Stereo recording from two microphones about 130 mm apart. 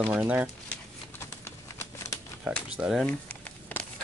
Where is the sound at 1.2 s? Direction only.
20° left (ahead or behind).